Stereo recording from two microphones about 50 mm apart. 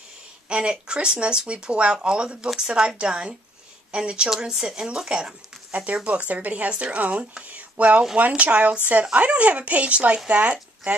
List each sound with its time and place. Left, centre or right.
0.5 s speech: centre
5.7 s speech: right